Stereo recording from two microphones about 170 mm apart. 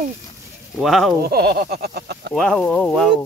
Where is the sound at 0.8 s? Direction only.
Centre (ahead or behind).